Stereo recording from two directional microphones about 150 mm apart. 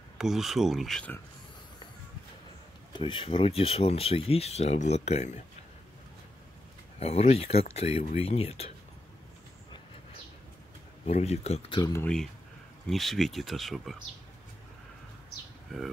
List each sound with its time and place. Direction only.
0.2 s speech: centre (ahead or behind)
2.9 s speech: 35° left (ahead or behind)
7.0 s speech: 45° left (ahead or behind)
11.1 s speech: 45° left (ahead or behind)
11.8 s speech: 15° left (ahead or behind)
12.8 s speech: centre (ahead or behind)
15.7 s speech: centre (ahead or behind)